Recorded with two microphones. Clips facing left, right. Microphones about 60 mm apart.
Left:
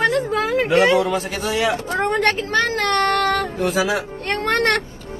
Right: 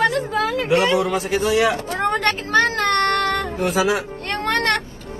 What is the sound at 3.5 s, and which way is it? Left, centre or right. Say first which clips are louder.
Speech: right 1 dB; right.